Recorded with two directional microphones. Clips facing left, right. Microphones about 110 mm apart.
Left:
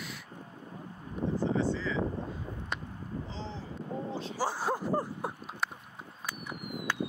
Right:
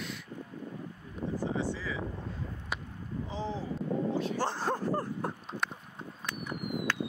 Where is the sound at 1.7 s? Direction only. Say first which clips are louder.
Left 4 dB; 10° right (ahead or behind).